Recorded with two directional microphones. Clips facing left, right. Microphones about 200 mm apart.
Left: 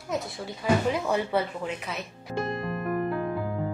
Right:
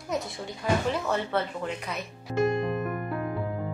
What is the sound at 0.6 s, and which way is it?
Speech, 10° left (ahead or behind).